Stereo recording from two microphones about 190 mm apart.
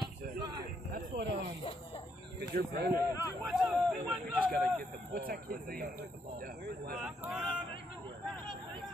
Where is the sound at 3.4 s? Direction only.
Centre (ahead or behind).